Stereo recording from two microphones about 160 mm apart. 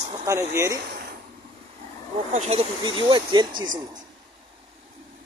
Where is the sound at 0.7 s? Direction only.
85° right.